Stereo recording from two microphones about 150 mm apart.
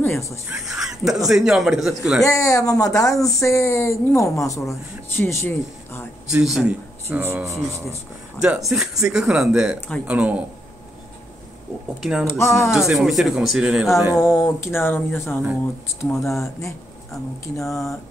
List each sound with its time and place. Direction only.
0.5 s speech: 5° right (ahead or behind)
2.2 s speech: 20° left (ahead or behind)
6.3 s speech: 5° right (ahead or behind)
7.1 s speech: 15° right (ahead or behind)
8.4 s speech: 5° right (ahead or behind)
12.0 s speech: 5° right (ahead or behind)
12.3 s speech: 15° left (ahead or behind)
12.7 s speech: 5° right (ahead or behind)
14.3 s speech: 15° left (ahead or behind)
16.3 s speech: centre (ahead or behind)